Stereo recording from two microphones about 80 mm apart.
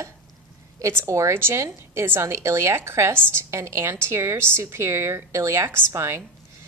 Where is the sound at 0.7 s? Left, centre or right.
Right.